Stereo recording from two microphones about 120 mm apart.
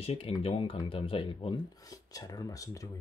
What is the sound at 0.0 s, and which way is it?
Speech, 55° left (ahead or behind).